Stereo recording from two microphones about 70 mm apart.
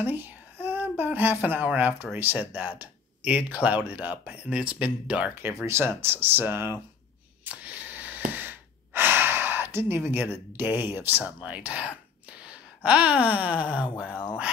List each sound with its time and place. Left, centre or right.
0.0 s speech: right
5.5 s speech: right
7.4 s gasp: right
11.4 s speech: centre